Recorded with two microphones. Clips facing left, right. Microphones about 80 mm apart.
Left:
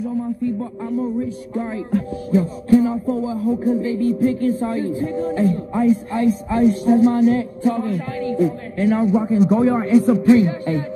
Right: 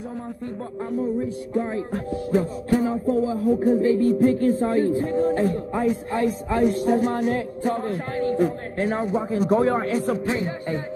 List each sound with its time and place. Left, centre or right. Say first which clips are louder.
0.4 s speech: left 7 dB; right
3.2 s speech: even; right
8.8 s speech: left 7 dB; right
9.5 s speech: left 3 dB; centre
9.8 s speech: left 10 dB; right